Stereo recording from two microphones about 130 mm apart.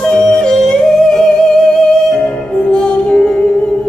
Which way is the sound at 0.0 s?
5° left (ahead or behind).